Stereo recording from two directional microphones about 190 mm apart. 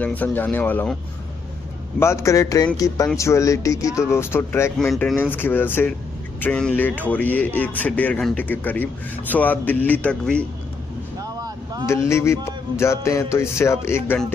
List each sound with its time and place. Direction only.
0.0 s speech: 10° left (ahead or behind)
2.0 s speech: 15° left (ahead or behind)
11.1 s vehicle: 20° right (ahead or behind)
12.1 s speech: 15° left (ahead or behind)